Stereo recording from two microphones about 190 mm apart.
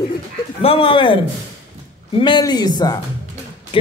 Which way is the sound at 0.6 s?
30° left (ahead or behind).